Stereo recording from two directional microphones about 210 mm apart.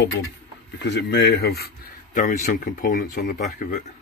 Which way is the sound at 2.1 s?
40° left (ahead or behind).